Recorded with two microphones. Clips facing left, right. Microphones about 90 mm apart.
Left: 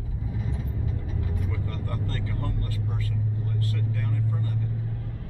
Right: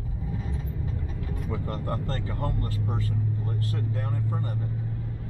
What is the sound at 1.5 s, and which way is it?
Speech, 30° right (ahead or behind).